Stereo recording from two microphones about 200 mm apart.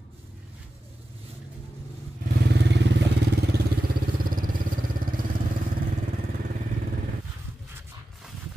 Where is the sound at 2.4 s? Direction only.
55° right (ahead or behind).